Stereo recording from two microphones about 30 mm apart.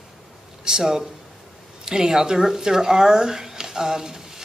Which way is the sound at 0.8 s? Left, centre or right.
Centre.